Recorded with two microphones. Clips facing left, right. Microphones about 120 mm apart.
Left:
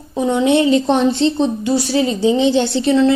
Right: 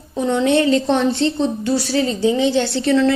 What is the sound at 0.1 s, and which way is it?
A woman's voice, 15° left (ahead or behind).